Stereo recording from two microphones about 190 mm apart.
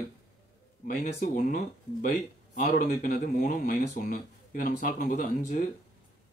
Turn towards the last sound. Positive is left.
turn(degrees=50)  # may be behind; listen again after turning